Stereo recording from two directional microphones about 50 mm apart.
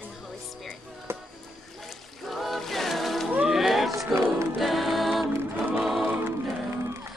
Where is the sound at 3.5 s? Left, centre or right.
Centre.